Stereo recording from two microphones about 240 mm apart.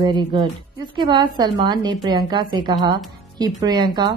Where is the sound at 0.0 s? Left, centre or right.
Centre.